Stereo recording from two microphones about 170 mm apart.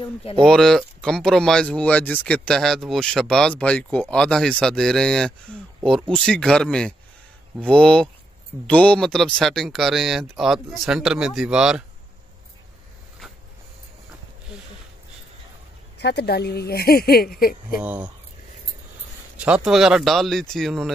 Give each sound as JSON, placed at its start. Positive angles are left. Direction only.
{"t": 0.0, "sound": "speech", "side_deg": 35}
{"t": 0.4, "sound": "speech", "side_deg": 5}
{"t": 13.2, "sound": "a sound", "side_deg": 0}
{"t": 16.0, "sound": "speech", "side_deg": 80}
{"t": 17.7, "sound": "speech", "side_deg": -5}
{"t": 19.3, "sound": "speech", "side_deg": -5}